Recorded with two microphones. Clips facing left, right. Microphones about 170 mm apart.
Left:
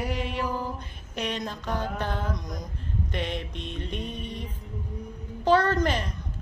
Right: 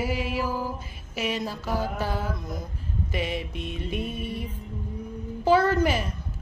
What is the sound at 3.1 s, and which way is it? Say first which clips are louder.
Music: right 3 dB; 5° right (ahead or behind).